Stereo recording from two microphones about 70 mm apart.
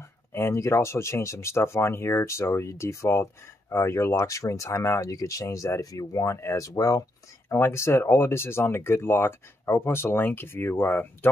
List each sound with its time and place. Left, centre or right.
0.3 s speech: left
7.4 s speech: left